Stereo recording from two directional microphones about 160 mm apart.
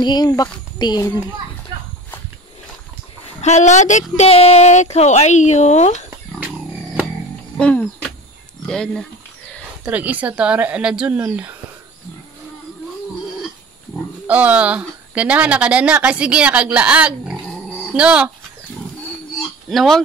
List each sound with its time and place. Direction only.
0.0 s a child's voice: 25° left (ahead or behind)
3.3 s speech: 45° left (ahead or behind)
7.5 s speech: 10° left (ahead or behind)
9.8 s speech: 10° right (ahead or behind)
14.2 s speech: 10° right (ahead or behind)
19.7 s speech: centre (ahead or behind)